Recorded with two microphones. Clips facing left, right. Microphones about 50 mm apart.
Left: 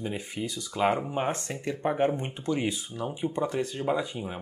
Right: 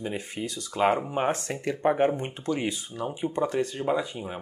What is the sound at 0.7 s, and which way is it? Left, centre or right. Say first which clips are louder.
Speech: right 2 dB; centre.